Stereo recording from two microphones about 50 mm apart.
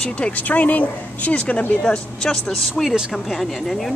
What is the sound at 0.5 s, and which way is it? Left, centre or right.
Speech, left.